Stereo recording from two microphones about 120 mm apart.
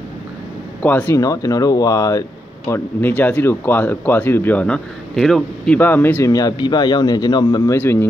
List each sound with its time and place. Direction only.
0.8 s speech: 20° left (ahead or behind)
2.7 s speech: 15° left (ahead or behind)
5.8 s speech: 15° left (ahead or behind)
6.3 s a man's voice: 35° left (ahead or behind)
7.7 s speech: 20° left (ahead or behind)